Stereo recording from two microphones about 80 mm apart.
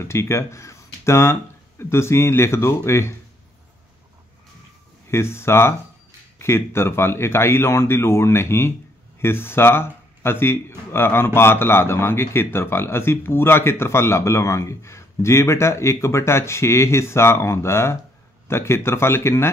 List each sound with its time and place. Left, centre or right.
0.0 s speech: left
5.0 s speech: left